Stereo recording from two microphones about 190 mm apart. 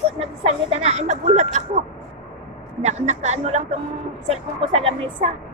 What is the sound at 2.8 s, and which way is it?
Speech, 35° right (ahead or behind).